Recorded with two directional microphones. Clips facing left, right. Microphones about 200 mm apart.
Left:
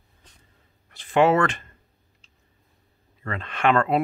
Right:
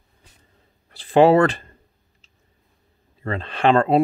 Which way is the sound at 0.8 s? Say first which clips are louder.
Right 5 dB; 35° right (ahead or behind).